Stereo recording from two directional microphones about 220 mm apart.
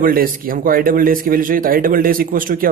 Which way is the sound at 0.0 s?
40° right (ahead or behind).